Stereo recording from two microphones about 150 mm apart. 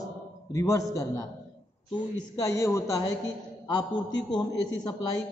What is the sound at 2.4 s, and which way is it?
A man's voice, 20° left (ahead or behind).